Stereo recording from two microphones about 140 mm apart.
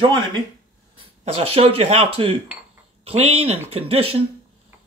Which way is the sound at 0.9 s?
45° right (ahead or behind).